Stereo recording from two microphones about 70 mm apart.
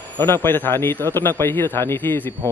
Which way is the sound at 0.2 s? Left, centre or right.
Left.